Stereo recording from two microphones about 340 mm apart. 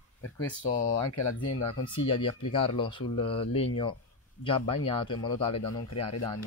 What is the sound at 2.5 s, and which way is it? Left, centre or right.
Speech, centre.